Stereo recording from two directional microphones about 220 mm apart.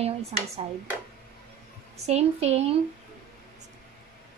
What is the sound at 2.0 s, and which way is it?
Speech, 30° right (ahead or behind).